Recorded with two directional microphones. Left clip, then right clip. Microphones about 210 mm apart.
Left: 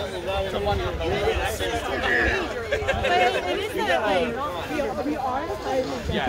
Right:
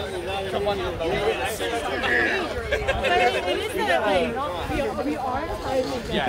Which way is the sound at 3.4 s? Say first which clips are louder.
Right 1 dB; 15° right (ahead or behind).